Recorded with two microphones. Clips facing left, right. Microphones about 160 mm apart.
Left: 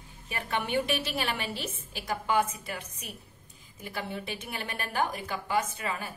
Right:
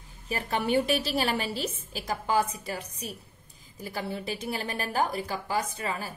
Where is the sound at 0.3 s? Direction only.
35° right (ahead or behind).